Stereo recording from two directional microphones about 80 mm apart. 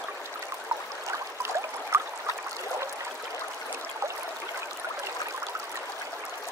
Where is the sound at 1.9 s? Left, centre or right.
Right.